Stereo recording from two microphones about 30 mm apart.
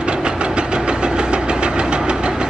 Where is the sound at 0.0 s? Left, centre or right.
Right.